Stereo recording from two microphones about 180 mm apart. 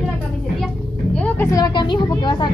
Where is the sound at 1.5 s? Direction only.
20° left (ahead or behind).